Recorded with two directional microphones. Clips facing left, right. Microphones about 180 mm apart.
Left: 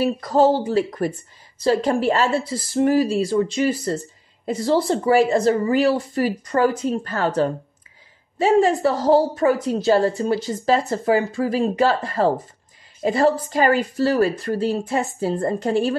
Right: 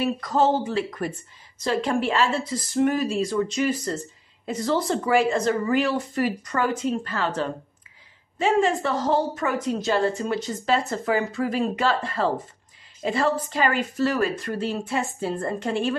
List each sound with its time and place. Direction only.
0.0 s a woman's voice: 35° left (ahead or behind)